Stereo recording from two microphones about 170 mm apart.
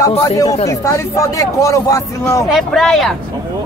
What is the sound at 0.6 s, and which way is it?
Speech, 20° left (ahead or behind).